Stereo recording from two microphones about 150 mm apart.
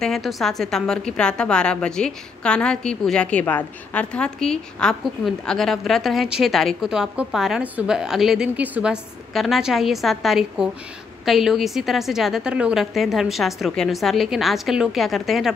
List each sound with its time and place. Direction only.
0.0 s a woman's voice: centre (ahead or behind)